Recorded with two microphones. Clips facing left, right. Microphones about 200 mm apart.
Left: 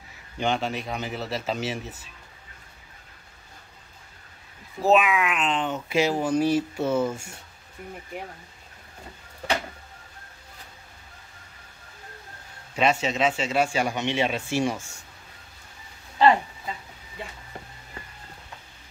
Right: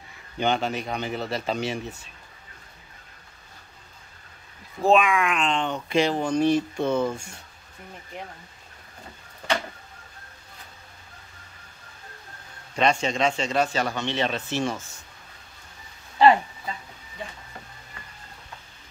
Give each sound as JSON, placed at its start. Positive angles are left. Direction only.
{"t": 0.4, "sound": "speech", "side_deg": 0}
{"t": 4.8, "sound": "speech", "side_deg": 5}
{"t": 12.7, "sound": "speech", "side_deg": 5}